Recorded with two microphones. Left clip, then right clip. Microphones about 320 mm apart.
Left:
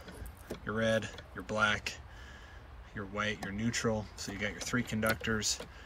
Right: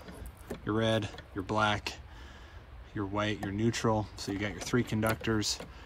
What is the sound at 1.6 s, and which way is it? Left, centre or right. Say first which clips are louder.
Speech: even; centre.